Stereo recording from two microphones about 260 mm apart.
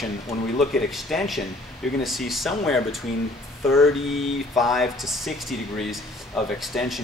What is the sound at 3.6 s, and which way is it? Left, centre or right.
Speech, centre.